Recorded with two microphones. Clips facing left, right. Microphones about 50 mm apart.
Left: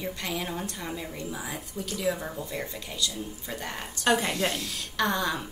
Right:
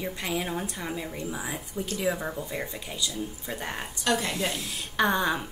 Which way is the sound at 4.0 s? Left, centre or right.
Left.